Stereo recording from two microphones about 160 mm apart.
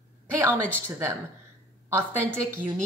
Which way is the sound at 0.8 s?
15° right (ahead or behind).